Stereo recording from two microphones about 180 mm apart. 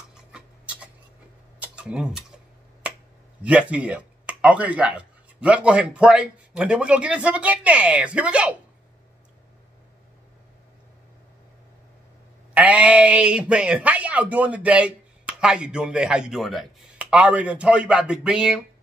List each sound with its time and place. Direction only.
1.6 s tick-tock: 5° right (ahead or behind)
3.4 s speech: 5° right (ahead or behind)
12.5 s speech: 5° right (ahead or behind)